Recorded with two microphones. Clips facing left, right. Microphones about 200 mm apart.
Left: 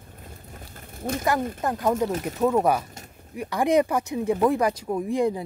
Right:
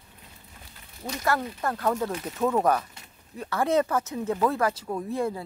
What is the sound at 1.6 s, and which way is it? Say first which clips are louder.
Speech: left 2 dB; 15° left (ahead or behind).